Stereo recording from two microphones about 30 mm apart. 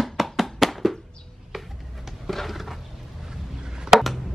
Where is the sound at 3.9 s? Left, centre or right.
Centre.